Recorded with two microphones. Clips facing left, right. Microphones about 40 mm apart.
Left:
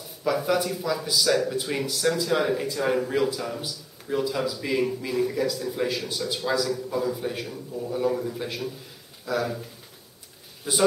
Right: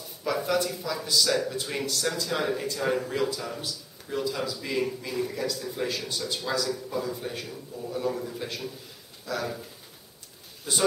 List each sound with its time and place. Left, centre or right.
0.2 s speech: centre